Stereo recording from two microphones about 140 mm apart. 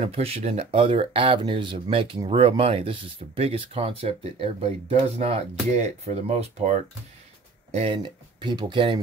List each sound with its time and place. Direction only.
0.0 s speech: 45° right (ahead or behind)
7.7 s speech: 40° right (ahead or behind)